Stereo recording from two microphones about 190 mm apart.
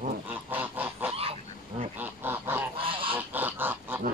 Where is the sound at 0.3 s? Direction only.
10° right (ahead or behind).